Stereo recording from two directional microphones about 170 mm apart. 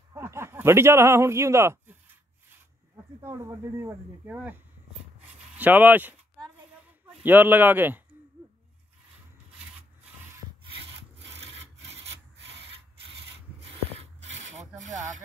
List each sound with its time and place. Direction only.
0.1 s speech: 15° right (ahead or behind)
3.2 s speech: 15° right (ahead or behind)
5.6 s speech: 10° right (ahead or behind)
7.2 s speech: 10° right (ahead or behind)
10.6 s wood: 35° right (ahead or behind)
11.2 s sawing: 90° right
14.8 s speech: 45° right (ahead or behind)